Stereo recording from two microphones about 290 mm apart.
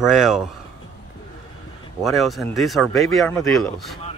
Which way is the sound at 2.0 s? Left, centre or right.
Centre.